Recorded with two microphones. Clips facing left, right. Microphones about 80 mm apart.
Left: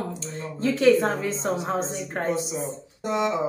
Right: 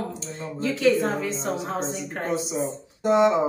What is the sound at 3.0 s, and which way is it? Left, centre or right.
Speech, right.